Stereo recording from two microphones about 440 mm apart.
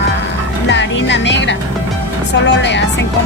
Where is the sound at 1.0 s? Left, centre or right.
Left.